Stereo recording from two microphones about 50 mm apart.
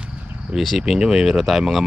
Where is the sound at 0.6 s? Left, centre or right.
Centre.